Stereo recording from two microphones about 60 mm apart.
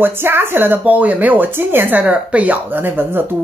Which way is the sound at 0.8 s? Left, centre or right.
Right.